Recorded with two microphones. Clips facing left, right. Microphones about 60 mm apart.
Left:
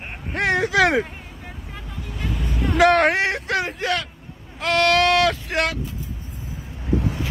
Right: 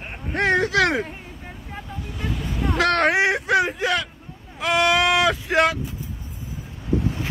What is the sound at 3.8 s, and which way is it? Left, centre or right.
Speech, centre.